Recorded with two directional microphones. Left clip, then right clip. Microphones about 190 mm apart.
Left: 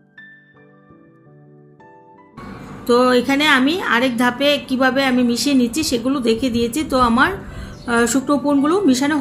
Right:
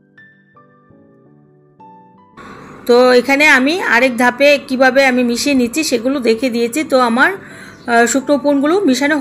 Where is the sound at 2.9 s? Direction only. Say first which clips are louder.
Right 5 dB; 20° right (ahead or behind).